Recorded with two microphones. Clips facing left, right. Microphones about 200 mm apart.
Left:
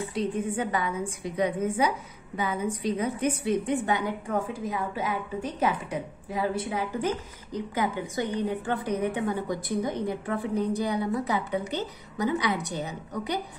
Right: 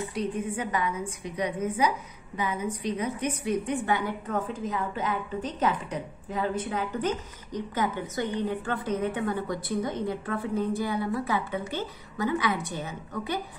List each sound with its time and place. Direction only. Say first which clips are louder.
0.1 s a woman's voice: left 2 dB; 30° left (ahead or behind)